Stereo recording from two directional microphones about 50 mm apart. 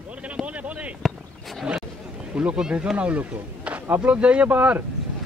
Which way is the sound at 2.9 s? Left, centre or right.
Right.